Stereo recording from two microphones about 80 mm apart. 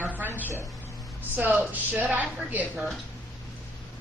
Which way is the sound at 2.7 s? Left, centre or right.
Centre.